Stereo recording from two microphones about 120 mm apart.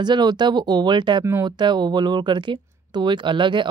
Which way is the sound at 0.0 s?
35° right (ahead or behind).